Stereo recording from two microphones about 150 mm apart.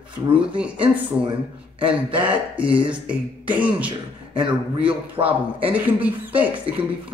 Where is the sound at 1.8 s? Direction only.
30° right (ahead or behind).